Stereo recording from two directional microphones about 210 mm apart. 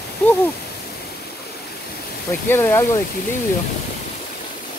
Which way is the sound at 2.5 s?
10° left (ahead or behind).